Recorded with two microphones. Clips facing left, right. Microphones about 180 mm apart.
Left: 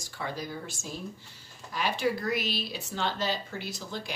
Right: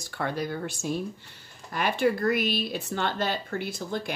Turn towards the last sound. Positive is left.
turn(degrees=-55)  # may be behind; listen again after turning